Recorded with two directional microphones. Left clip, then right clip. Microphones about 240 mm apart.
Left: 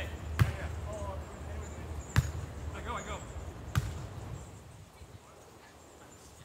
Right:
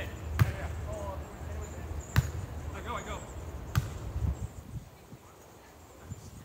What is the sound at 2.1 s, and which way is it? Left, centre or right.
Basketball bounce, centre.